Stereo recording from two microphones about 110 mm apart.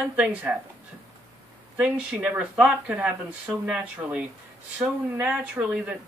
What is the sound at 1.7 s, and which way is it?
Speech, 10° right (ahead or behind).